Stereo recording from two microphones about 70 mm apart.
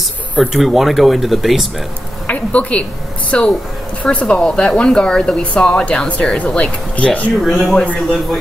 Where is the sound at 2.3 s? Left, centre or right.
Centre.